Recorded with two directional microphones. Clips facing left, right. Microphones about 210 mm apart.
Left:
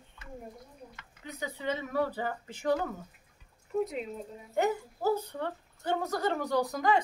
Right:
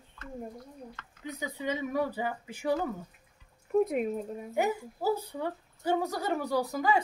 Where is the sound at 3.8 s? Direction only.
50° right (ahead or behind).